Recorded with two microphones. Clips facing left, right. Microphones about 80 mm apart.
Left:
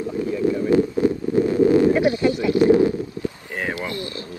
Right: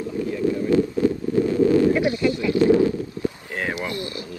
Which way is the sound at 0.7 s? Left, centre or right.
Left.